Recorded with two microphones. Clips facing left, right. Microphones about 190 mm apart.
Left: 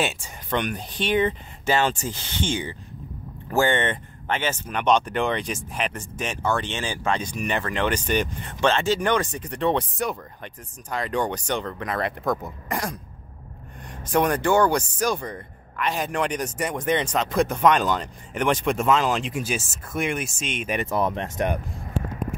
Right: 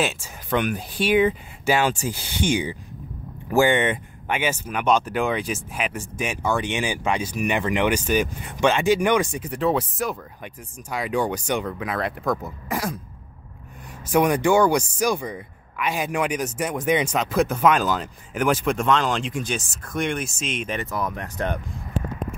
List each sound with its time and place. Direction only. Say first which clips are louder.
0.0 s speech: right 1 dB; 5° right (ahead or behind)
14.1 s speech: right 2 dB; 10° right (ahead or behind)
20.7 s speech: left 3 dB; 25° left (ahead or behind)